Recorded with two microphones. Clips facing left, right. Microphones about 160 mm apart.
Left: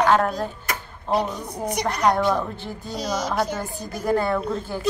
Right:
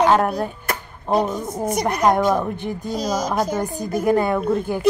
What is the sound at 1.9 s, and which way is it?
Speech, 20° right (ahead or behind).